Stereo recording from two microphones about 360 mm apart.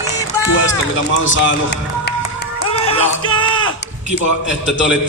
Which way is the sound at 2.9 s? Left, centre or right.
Centre.